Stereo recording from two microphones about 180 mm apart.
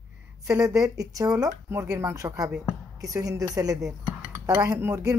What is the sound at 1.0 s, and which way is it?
Speech, 20° right (ahead or behind).